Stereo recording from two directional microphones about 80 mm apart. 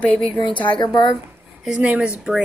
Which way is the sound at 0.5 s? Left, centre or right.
Left.